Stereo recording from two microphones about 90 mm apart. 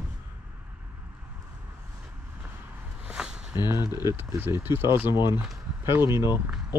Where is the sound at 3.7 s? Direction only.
25° right (ahead or behind).